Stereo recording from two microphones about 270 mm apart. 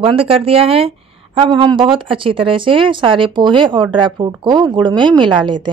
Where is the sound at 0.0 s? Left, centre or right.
Right.